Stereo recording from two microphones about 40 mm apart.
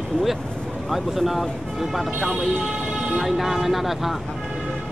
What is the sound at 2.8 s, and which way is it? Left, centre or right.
Vehicle, centre.